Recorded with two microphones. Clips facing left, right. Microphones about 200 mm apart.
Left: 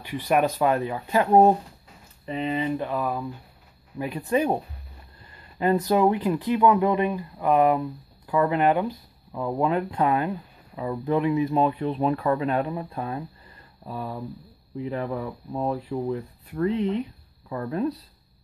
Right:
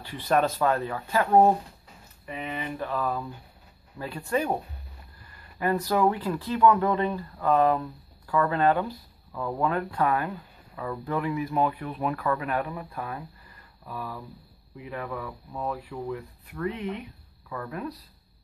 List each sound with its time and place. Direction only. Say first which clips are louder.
0.0 s speech: left 2 dB; 15° left (ahead or behind)
5.6 s speech: left 4 dB; 20° left (ahead or behind)